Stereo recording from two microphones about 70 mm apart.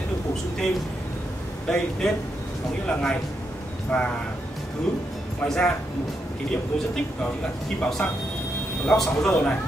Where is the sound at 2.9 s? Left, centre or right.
Centre.